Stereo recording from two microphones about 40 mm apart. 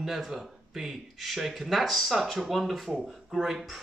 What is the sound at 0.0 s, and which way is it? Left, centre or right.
Speech, centre.